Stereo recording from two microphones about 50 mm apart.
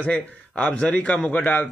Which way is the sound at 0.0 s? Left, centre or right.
Left.